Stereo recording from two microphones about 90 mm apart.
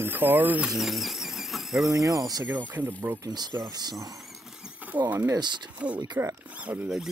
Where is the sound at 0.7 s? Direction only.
Centre (ahead or behind).